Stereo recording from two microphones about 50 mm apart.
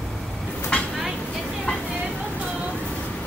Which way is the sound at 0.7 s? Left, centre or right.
Left.